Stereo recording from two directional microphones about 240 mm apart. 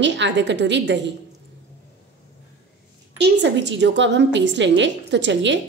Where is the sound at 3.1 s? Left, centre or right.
Right.